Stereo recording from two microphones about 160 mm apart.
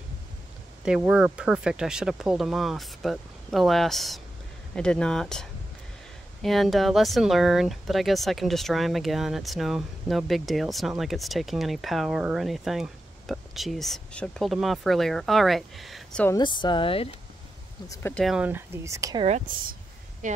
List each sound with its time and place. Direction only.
0.8 s speech: 5° right (ahead or behind)
16.3 s speech: 25° left (ahead or behind)
18.1 s speech: centre (ahead or behind)
18.9 s speech: 20° right (ahead or behind)
20.2 s speech: 50° right (ahead or behind)